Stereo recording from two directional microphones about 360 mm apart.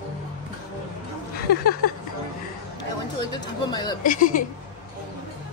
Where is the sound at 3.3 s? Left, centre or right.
Centre.